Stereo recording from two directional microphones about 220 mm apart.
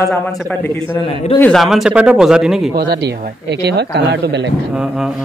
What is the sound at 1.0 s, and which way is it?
Speech, 25° left (ahead or behind).